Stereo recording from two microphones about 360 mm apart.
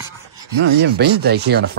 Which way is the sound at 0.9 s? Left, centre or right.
Right.